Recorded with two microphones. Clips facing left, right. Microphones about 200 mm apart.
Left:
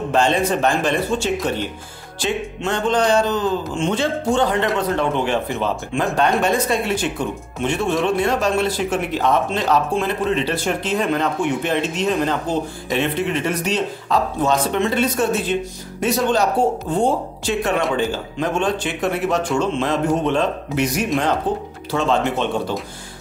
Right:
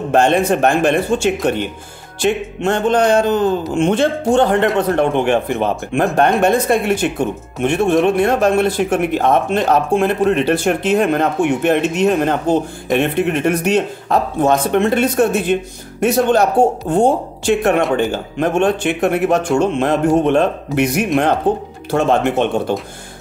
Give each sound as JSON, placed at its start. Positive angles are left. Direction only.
{"t": 0.1, "sound": "speech", "side_deg": -55}